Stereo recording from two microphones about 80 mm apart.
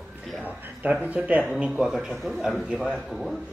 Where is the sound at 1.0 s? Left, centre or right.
Centre.